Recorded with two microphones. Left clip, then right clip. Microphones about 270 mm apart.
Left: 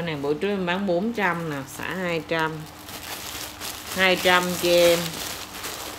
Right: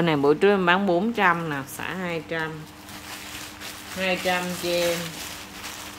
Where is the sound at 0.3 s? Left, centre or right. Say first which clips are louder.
Right 6 dB; centre.